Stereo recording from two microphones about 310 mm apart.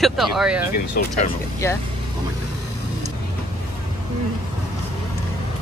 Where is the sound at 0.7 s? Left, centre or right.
Left.